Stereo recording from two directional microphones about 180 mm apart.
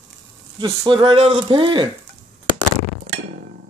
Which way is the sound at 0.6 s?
25° right (ahead or behind).